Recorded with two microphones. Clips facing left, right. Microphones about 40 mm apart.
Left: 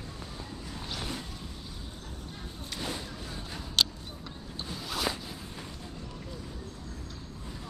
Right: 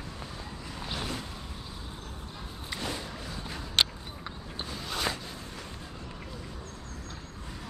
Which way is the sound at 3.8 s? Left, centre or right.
Right.